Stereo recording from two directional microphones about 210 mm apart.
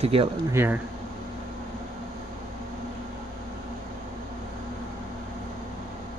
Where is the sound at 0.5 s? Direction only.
10° right (ahead or behind).